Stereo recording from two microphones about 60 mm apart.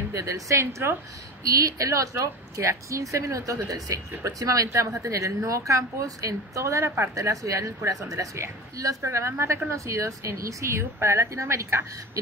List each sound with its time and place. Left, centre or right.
0.1 s a woman's voice: right
1.5 s a woman's voice: right